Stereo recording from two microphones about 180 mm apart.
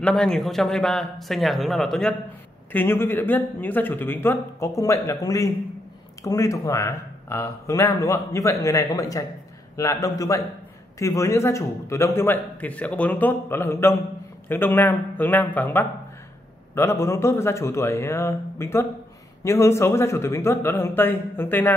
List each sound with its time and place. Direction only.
0.0 s a man's voice: 5° left (ahead or behind)